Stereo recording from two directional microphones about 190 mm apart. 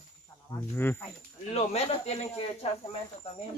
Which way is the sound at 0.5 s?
15° left (ahead or behind).